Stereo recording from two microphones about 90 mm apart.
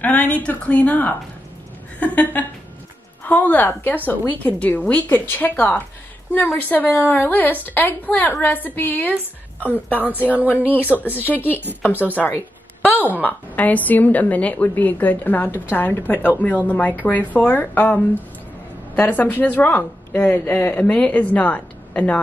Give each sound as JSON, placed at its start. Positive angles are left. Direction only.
{"t": 0.0, "sound": "a woman's voice", "side_deg": 20}
{"t": 10.2, "sound": "speech", "side_deg": -15}
{"t": 11.3, "sound": "a woman's voice", "side_deg": 20}
{"t": 11.9, "sound": "speech", "side_deg": -20}
{"t": 12.8, "sound": "a sound", "side_deg": 20}
{"t": 13.2, "sound": "a woman's voice", "side_deg": 20}